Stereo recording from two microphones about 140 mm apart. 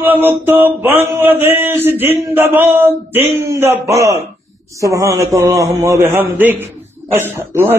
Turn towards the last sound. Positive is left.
turn(degrees=-15)  # may be behind; listen again after turning